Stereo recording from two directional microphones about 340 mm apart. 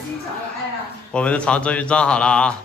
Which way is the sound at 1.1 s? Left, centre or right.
Centre.